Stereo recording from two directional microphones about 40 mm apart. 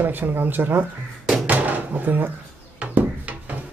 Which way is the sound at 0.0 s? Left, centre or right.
Right.